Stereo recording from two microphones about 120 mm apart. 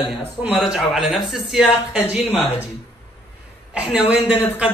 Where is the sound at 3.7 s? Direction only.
10° right (ahead or behind).